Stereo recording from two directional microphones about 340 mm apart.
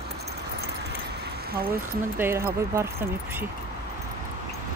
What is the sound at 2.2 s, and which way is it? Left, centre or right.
Speech, centre.